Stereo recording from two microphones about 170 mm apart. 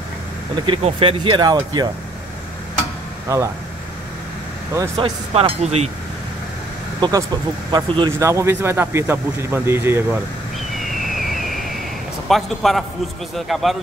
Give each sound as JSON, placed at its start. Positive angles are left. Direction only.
{"t": 0.7, "sound": "speech", "side_deg": -35}
{"t": 3.3, "sound": "speech", "side_deg": -15}
{"t": 4.7, "sound": "speech", "side_deg": -30}
{"t": 7.0, "sound": "speech", "side_deg": -20}
{"t": 10.7, "sound": "vehicle", "side_deg": 0}
{"t": 12.3, "sound": "a man's voice", "side_deg": 0}